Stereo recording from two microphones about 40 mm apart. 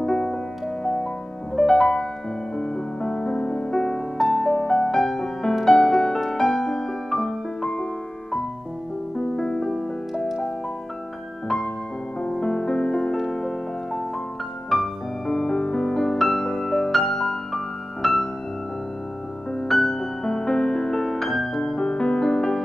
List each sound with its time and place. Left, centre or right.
0.0 s music: centre
1.6 s music: centre
4.2 s music: centre
9.2 s music: centre
11.4 s music: centre
19.7 s music: centre